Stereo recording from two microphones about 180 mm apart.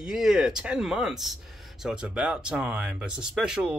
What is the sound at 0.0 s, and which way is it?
Speech, 5° right (ahead or behind).